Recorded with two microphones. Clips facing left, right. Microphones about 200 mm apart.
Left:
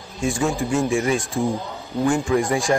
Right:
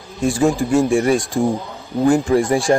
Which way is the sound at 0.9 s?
35° right (ahead or behind).